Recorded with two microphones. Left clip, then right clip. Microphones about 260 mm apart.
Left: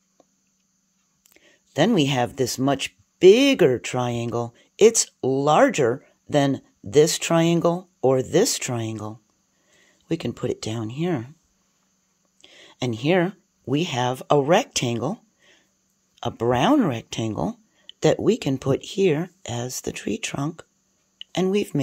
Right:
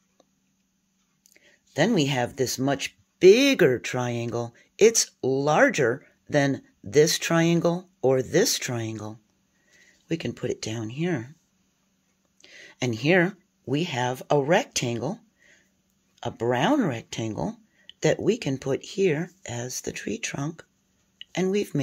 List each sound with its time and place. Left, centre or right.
1.3 s speech: left
12.4 s speech: centre